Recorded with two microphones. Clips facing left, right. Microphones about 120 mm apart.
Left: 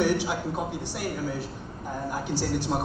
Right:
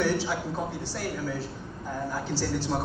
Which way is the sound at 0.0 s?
15° left (ahead or behind).